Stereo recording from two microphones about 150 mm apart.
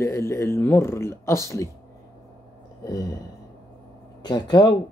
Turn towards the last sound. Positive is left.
turn(degrees=30)  # may be behind; listen again after turning